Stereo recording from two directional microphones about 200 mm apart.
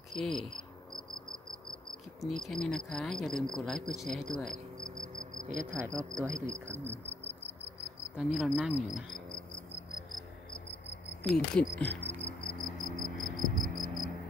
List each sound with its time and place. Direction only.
0.1 s cricket: centre (ahead or behind)
2.2 s speech: centre (ahead or behind)
5.1 s cricket: 40° right (ahead or behind)
5.7 s speech: 15° right (ahead or behind)
8.2 s speech: centre (ahead or behind)
11.2 s speech: 5° left (ahead or behind)
11.7 s cricket: 10° left (ahead or behind)
13.4 s a sound: centre (ahead or behind)